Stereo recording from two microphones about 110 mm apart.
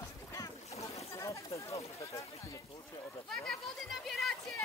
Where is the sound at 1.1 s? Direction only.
30° left (ahead or behind).